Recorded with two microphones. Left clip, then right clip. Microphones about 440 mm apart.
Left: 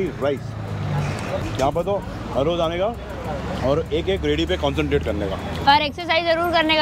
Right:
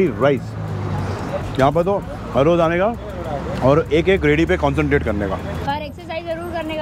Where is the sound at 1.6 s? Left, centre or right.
Right.